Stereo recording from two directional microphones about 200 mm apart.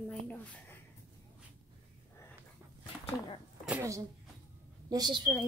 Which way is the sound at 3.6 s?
10° right (ahead or behind).